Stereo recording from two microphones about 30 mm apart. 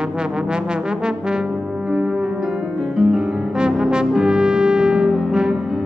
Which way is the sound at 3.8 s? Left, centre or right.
Right.